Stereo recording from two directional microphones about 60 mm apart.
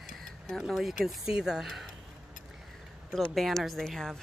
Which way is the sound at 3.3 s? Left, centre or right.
Centre.